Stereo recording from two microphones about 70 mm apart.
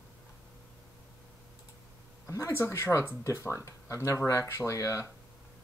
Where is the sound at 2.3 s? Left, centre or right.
Left.